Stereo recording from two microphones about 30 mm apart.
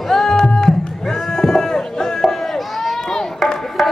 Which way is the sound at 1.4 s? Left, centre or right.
Centre.